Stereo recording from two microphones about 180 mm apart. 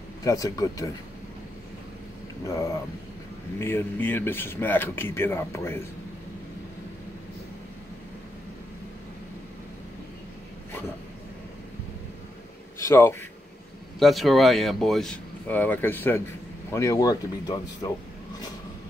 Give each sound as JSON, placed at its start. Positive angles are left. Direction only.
{"t": 0.2, "sound": "speech", "side_deg": 20}
{"t": 2.4, "sound": "speech", "side_deg": 15}
{"t": 12.7, "sound": "a sound", "side_deg": 15}
{"t": 13.9, "sound": "speech", "side_deg": 0}